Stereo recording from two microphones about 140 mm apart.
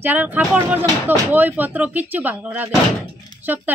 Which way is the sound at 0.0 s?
10° right (ahead or behind).